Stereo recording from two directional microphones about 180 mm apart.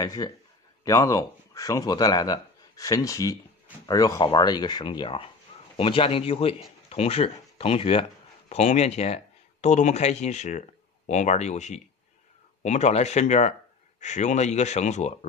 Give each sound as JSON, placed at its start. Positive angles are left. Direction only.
{"t": 0.0, "sound": "a man's voice", "side_deg": 20}